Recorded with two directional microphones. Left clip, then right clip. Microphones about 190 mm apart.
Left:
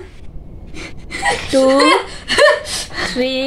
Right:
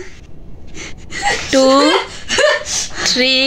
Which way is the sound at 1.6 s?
5° right (ahead or behind).